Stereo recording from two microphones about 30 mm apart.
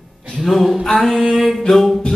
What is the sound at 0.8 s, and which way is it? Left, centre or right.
Singing, left.